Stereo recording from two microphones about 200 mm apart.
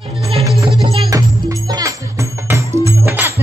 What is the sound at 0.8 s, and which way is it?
Music, 15° right (ahead or behind).